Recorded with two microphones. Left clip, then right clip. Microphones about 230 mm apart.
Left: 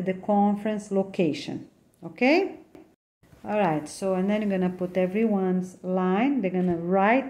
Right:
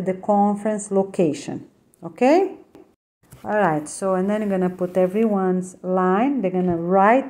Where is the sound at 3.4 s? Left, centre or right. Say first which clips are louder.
Right 5 dB; right.